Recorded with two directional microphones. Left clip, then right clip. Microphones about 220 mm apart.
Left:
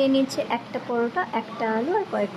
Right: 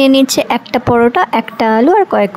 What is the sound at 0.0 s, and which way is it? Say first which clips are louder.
A woman's voice: right 12 dB; 45° right (ahead or behind).